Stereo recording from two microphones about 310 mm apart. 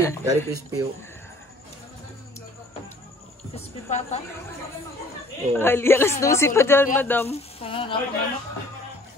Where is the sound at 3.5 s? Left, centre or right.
Left.